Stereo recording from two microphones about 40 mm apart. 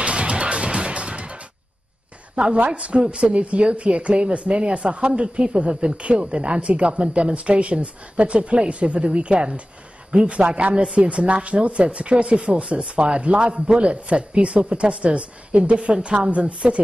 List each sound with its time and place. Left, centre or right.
0.0 s music: right
2.3 s a woman's voice: right
5.9 s a man's voice: right